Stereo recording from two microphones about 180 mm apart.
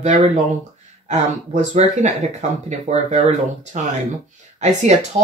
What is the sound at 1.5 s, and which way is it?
Speech, 40° right (ahead or behind).